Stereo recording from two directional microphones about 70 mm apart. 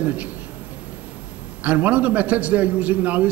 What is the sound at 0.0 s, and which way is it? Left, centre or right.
Speech, right.